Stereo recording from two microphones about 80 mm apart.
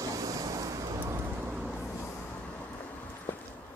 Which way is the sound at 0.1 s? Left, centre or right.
Right.